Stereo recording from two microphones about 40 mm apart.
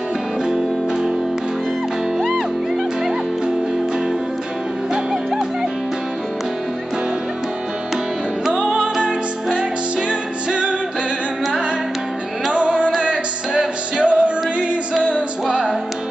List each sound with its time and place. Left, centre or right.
4.9 s music: centre
8.5 s music: right
12.5 s music: right